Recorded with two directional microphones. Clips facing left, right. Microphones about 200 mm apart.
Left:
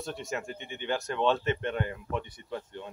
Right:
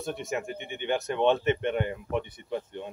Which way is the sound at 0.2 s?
20° right (ahead or behind).